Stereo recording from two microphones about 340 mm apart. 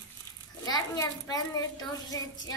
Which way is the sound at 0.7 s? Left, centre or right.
Centre.